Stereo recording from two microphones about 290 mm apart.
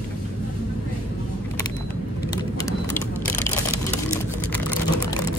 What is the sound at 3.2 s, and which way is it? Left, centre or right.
Crushing, centre.